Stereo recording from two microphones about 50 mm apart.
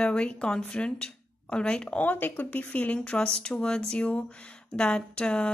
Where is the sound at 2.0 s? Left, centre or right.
Left.